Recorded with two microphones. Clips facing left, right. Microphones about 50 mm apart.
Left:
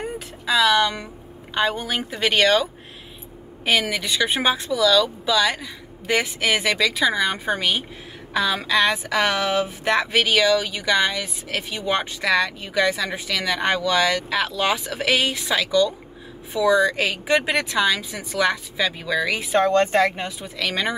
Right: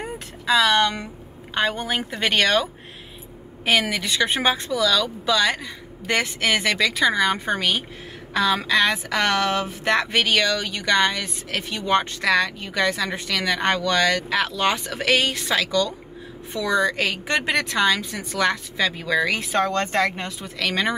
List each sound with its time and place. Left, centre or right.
0.5 s speech: centre
3.9 s speech: centre
19.3 s speech: centre